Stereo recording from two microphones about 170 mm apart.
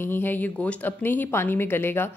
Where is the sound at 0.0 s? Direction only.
10° left (ahead or behind).